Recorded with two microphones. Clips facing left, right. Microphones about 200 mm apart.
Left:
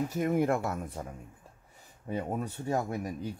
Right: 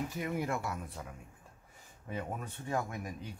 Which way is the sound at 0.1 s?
45° left (ahead or behind).